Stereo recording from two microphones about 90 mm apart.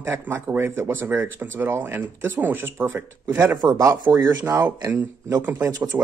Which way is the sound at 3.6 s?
50° right (ahead or behind).